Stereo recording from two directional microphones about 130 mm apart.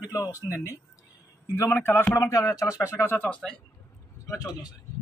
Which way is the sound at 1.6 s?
15° left (ahead or behind).